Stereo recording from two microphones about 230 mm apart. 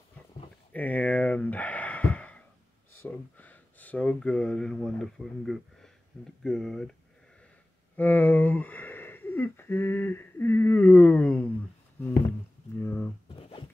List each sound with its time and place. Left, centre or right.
0.7 s a sound: centre
3.0 s speech: centre
12.7 s speech: centre
13.4 s zipper: left